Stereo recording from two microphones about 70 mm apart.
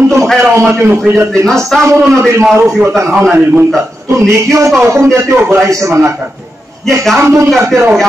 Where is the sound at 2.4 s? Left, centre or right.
Right.